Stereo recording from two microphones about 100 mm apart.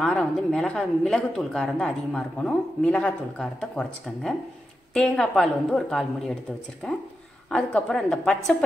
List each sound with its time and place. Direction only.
0.0 s speech: 5° left (ahead or behind)